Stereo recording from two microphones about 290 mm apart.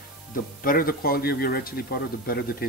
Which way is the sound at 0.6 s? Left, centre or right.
Left.